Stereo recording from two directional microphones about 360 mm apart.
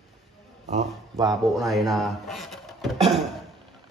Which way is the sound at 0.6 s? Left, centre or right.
Centre.